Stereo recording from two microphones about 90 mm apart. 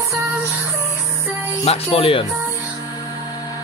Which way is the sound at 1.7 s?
90° left.